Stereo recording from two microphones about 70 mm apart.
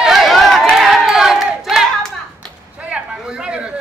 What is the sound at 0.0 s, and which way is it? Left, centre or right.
Run, centre.